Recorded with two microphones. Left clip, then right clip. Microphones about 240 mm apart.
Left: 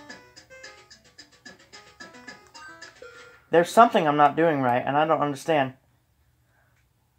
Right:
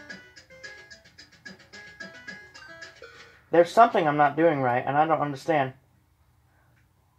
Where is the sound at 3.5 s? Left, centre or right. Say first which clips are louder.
Left 1 dB; left.